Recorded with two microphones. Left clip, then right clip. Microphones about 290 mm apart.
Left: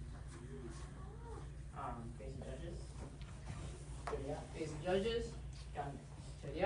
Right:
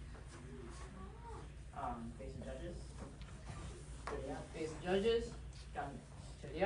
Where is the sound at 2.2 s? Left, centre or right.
Centre.